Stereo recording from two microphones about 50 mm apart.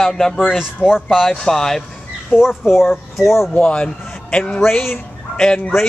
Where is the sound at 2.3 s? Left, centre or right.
Centre.